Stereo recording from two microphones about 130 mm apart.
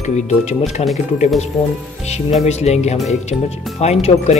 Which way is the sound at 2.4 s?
55° left (ahead or behind).